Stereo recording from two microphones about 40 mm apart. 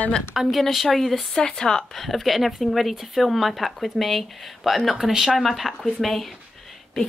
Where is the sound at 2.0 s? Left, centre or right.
Centre.